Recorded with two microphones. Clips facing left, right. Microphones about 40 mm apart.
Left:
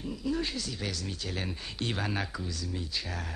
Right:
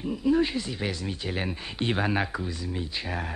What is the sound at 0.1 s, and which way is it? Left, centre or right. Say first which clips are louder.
Speech: right 9 dB; right.